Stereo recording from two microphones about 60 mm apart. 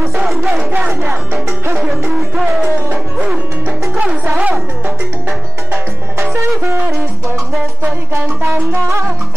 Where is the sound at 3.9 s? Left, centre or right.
Right.